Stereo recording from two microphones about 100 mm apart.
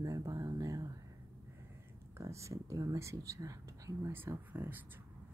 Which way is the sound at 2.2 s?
30° right (ahead or behind).